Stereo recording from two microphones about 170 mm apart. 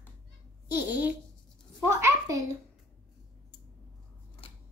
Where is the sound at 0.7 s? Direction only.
10° right (ahead or behind).